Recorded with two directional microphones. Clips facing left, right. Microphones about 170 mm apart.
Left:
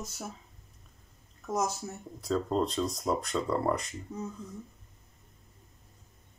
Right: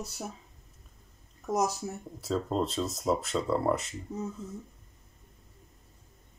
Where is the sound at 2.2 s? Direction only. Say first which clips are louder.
Left 1 dB; centre (ahead or behind).